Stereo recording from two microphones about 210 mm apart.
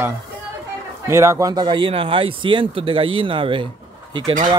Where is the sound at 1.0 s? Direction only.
15° right (ahead or behind).